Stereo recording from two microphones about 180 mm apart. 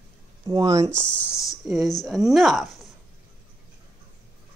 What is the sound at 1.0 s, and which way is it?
Speech, 25° left (ahead or behind).